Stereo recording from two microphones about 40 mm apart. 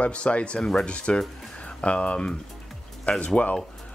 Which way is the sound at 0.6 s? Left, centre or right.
Centre.